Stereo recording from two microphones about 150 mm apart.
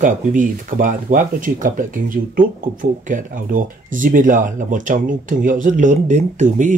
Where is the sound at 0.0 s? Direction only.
60° right (ahead or behind).